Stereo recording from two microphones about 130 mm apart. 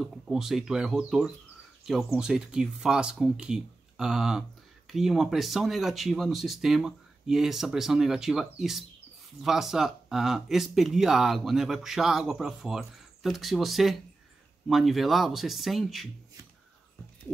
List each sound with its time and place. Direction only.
0.0 s speech: 5° right (ahead or behind)